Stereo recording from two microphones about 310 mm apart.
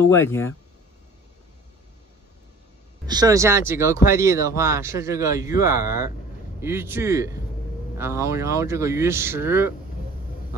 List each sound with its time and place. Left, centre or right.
0.1 s speech: centre
3.1 s speech: centre